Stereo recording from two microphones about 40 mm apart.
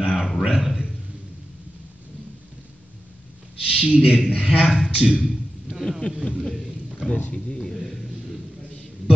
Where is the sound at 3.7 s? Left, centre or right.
Right.